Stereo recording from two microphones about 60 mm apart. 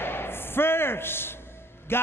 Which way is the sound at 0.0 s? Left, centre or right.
Left.